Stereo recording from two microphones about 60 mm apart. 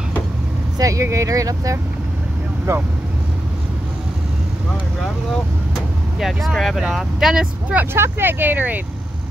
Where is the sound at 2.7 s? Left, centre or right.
Right.